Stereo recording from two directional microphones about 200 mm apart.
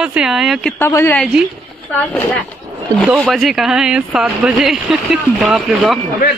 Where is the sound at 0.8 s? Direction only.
10° left (ahead or behind).